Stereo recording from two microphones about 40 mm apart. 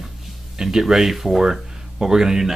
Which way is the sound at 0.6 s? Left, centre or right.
Centre.